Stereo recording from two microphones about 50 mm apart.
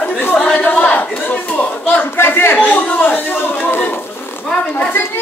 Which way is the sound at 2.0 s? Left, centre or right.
Left.